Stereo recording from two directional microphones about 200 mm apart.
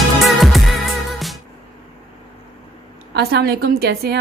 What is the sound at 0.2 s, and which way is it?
Music, centre (ahead or behind).